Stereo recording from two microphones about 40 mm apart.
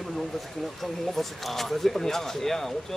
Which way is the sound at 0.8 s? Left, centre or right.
Centre.